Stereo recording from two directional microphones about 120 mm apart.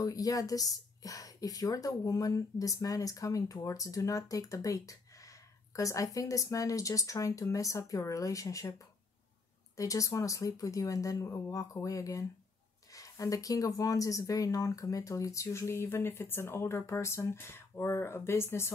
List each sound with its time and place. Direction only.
0.0 s speech: 30° left (ahead or behind)